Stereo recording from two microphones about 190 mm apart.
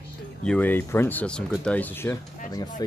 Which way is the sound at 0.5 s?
10° left (ahead or behind).